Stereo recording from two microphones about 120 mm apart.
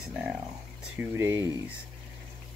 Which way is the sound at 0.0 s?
5° right (ahead or behind).